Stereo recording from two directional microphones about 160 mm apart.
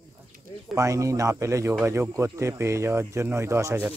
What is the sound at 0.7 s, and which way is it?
Speech, 20° right (ahead or behind).